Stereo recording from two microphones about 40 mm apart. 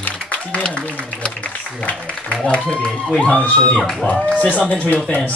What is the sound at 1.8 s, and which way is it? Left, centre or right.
Speech, left.